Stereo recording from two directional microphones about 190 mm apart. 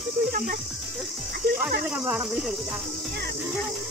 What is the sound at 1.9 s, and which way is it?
Speech, 5° right (ahead or behind).